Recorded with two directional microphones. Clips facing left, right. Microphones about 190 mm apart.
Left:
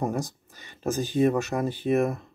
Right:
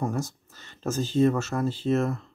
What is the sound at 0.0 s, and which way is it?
Speech, 15° left (ahead or behind).